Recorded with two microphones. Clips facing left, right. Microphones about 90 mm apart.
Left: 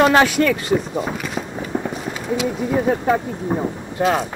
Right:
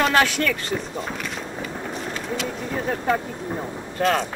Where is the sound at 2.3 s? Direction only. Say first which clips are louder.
Left 9 dB; 5° left (ahead or behind).